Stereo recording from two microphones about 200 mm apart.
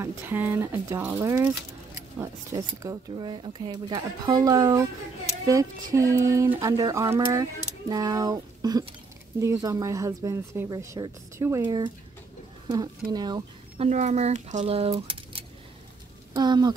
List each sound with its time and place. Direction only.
0.0 s speech: 10° right (ahead or behind)
5.9 s a woman's voice: 15° right (ahead or behind)
13.8 s speech: 35° right (ahead or behind)